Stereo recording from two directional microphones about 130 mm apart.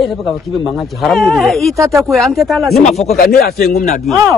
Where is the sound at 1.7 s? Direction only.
25° right (ahead or behind).